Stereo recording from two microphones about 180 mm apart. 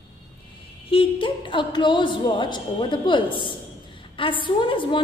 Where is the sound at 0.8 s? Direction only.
30° left (ahead or behind).